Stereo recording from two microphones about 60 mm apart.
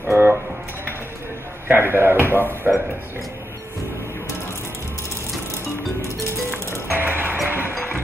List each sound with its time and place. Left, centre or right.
0.1 s music: right
1.7 s speech: right
2.6 s speech: centre
6.9 s music: right